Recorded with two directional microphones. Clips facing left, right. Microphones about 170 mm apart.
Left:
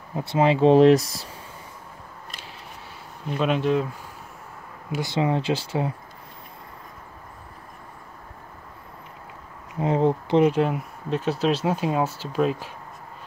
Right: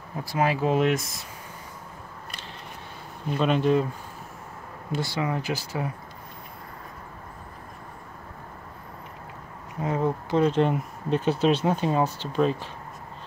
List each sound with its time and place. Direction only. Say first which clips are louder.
0.1 s speech: left 5 dB; 25° left (ahead or behind)
3.3 s speech: even; centre (ahead or behind)
5.0 s speech: left 6 dB; 25° left (ahead or behind)
9.8 s speech: left 5 dB; 25° left (ahead or behind)
10.5 s speech: even; 5° left (ahead or behind)